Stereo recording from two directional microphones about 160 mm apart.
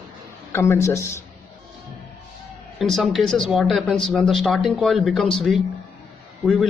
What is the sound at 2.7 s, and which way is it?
Speech, centre (ahead or behind).